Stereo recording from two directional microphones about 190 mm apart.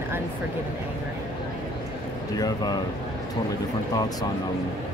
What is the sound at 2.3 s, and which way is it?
Speech, 20° left (ahead or behind).